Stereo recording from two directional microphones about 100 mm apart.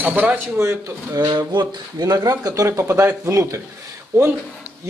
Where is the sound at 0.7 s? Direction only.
35° right (ahead or behind).